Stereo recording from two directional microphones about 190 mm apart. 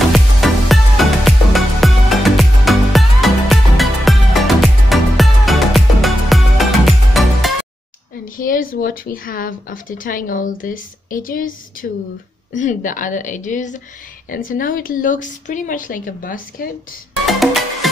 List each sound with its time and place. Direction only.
0.1 s music: centre (ahead or behind)
8.4 s a woman's voice: 45° left (ahead or behind)